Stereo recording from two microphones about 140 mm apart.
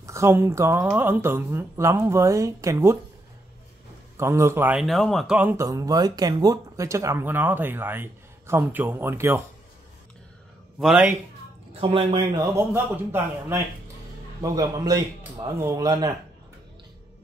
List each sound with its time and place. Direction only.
0.0 s speech: 20° right (ahead or behind)
4.2 s speech: 20° right (ahead or behind)
4.8 s speech: centre (ahead or behind)
5.7 s speech: 25° right (ahead or behind)
10.8 s speech: 5° right (ahead or behind)
11.8 s speech: 40° right (ahead or behind)
12.4 s speech: 20° right (ahead or behind)